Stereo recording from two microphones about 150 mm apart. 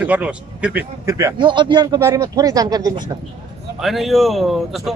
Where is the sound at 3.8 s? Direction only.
Centre (ahead or behind).